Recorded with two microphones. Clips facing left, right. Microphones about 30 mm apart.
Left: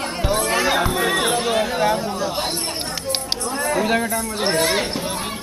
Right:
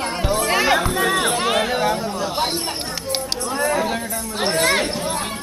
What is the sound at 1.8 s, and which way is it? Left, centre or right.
Chatter, centre.